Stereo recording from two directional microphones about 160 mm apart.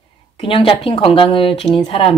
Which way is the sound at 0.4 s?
35° left (ahead or behind).